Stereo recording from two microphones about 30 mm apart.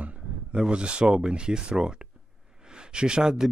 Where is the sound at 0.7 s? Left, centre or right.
Right.